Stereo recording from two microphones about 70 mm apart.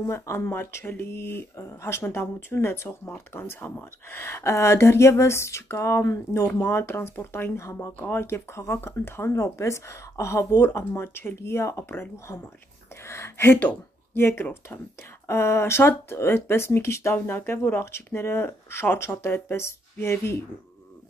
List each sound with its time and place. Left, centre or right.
0.0 s speech: left
17.1 s speech: left